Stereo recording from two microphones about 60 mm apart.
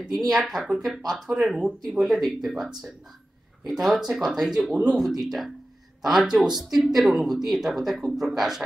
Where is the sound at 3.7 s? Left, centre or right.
Centre.